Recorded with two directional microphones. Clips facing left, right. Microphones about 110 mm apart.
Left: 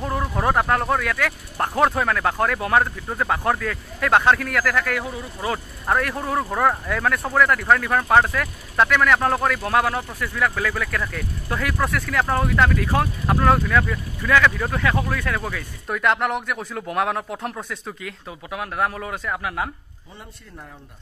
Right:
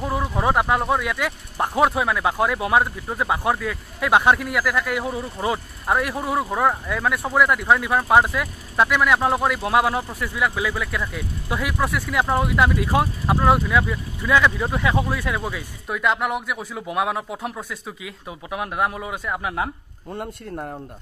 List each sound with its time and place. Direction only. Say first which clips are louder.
0.0 s speech: right 1 dB; centre (ahead or behind)
5.0 s speech: right 3 dB; 25° right (ahead or behind)
5.9 s speech: even; 10° right (ahead or behind)
15.9 s speech: left 1 dB; 5° right (ahead or behind)
18.5 s speech: right 1 dB; 20° right (ahead or behind)
20.1 s a man's voice: right 12 dB; 50° right (ahead or behind)